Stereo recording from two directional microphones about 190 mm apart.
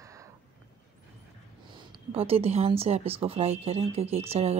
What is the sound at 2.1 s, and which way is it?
Speech, 30° right (ahead or behind).